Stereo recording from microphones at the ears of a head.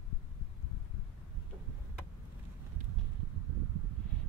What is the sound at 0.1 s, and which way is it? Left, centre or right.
Heart sounds, left.